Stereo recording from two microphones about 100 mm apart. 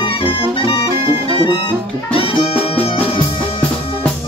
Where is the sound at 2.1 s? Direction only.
75° left (ahead or behind).